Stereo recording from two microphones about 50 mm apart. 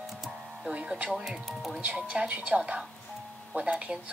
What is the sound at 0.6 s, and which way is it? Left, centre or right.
Speech, centre.